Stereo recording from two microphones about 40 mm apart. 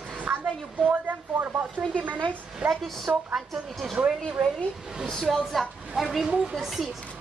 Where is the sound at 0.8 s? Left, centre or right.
Right.